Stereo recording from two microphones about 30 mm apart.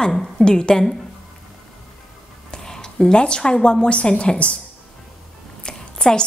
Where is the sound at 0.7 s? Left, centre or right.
Centre.